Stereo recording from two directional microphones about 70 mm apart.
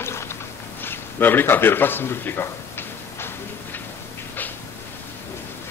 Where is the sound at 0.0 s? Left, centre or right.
Left.